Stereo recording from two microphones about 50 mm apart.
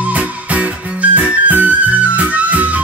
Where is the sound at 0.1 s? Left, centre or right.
Right.